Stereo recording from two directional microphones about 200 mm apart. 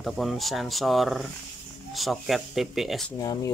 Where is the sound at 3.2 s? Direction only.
20° left (ahead or behind).